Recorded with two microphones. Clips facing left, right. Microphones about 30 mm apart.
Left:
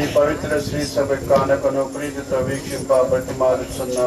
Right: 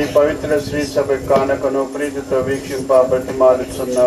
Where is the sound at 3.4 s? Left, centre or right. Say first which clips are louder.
Right 6 dB; right.